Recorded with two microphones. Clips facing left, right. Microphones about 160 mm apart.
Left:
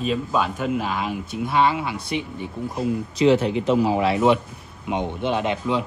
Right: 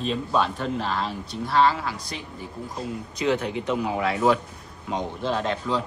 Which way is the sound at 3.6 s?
30° left (ahead or behind).